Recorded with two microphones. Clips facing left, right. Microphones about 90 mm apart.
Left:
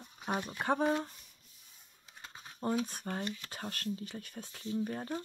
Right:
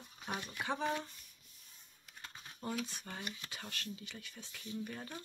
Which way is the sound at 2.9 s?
45° left (ahead or behind).